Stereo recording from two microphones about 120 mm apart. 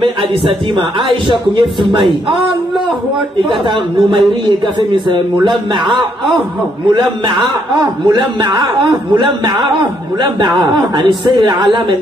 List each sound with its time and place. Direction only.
0.0 s a man's voice: 45° right (ahead or behind)
3.6 s a man's voice: 40° right (ahead or behind)
6.9 s a man's voice: 40° right (ahead or behind)